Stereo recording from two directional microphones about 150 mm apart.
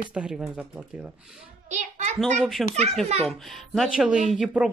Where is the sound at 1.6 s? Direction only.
50° right (ahead or behind).